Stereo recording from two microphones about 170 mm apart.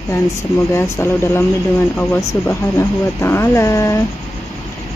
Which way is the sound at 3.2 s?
15° left (ahead or behind).